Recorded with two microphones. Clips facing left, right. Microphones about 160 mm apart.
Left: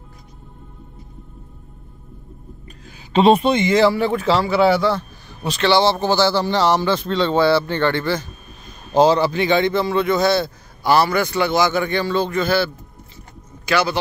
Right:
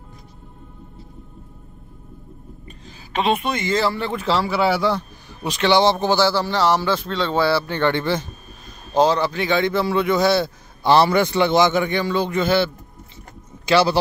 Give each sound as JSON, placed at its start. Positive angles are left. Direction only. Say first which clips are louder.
{"t": 3.1, "sound": "speech", "louder": "left 7 dB", "side_deg": 35}
{"t": 3.5, "sound": "speech", "louder": "left 6 dB", "side_deg": 15}
{"t": 8.9, "sound": "speech", "louder": "left 3 dB", "side_deg": 5}
{"t": 10.8, "sound": "a man's voice", "louder": "right 1 dB", "side_deg": -25}